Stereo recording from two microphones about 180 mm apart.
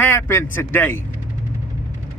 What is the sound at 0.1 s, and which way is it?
Speech, 10° left (ahead or behind).